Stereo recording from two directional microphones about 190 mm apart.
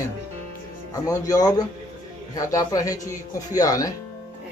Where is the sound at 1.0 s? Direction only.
20° left (ahead or behind).